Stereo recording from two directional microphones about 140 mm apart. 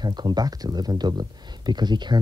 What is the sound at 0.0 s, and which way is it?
Speech, 30° right (ahead or behind).